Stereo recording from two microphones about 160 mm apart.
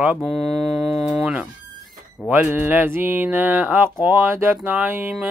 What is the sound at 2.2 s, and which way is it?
Mantra, 10° right (ahead or behind).